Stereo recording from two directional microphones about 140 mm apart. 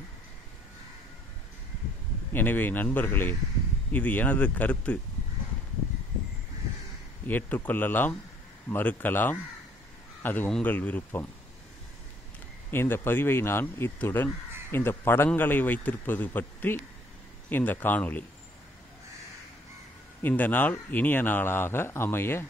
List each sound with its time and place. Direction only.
2.3 s speech: 15° left (ahead or behind)
7.2 s speech: 10° left (ahead or behind)
12.7 s speech: 15° left (ahead or behind)
20.2 s speech: 15° left (ahead or behind)